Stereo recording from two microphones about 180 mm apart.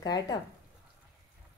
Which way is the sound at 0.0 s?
20° left (ahead or behind).